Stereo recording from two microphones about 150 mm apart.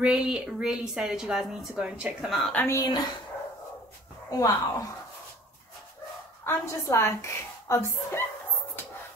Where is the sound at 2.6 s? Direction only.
20° left (ahead or behind).